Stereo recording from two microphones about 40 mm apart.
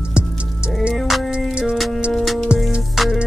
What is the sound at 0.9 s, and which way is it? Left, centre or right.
Music, centre.